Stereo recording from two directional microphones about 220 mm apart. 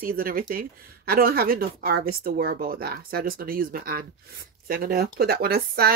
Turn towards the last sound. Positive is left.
turn(degrees=-45)  # may be behind; listen again after turning